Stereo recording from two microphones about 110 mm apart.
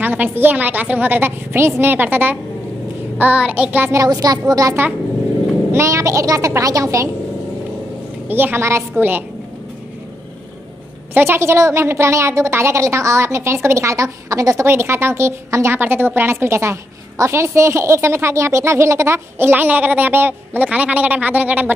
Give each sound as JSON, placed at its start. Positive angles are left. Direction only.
{"t": 0.0, "sound": "a woman's voice", "side_deg": -15}
{"t": 3.9, "sound": "a woman's voice", "side_deg": -35}
{"t": 8.3, "sound": "a woman's voice", "side_deg": -20}
{"t": 11.1, "sound": "a woman's voice", "side_deg": -20}